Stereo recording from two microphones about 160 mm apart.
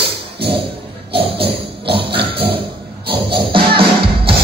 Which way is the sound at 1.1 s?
35° right (ahead or behind).